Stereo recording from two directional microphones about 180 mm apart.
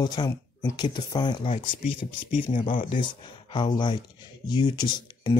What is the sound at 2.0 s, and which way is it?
Speech, 40° left (ahead or behind).